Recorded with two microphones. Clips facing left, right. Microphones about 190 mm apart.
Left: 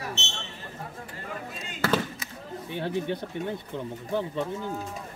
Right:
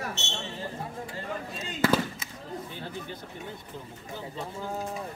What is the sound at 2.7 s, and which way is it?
Speech, 65° left (ahead or behind).